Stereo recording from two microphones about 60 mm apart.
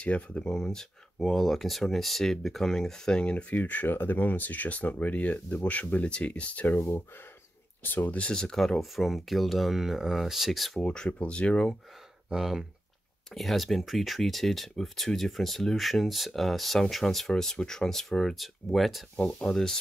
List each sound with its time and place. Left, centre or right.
0.0 s speech: left
0.4 s speech: centre; by 6.8 s left
7.8 s speech: left
8.3 s speech: centre
10.8 s speech: centre
12.3 s speech: centre